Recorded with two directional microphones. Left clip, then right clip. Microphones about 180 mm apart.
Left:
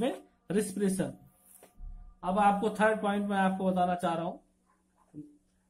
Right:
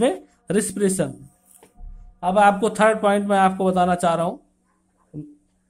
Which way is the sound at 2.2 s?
50° right (ahead or behind).